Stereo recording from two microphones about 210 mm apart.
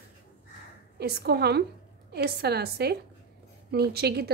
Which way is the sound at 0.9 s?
50° right (ahead or behind).